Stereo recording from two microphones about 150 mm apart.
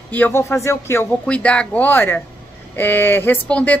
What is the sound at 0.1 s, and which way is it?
A woman's voice, 15° left (ahead or behind).